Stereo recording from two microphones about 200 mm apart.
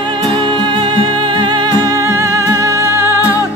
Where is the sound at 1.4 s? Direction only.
20° right (ahead or behind).